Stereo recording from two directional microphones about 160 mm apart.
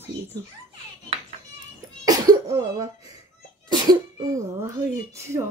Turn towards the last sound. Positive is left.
turn(degrees=-15)  # may be behind; listen again after turning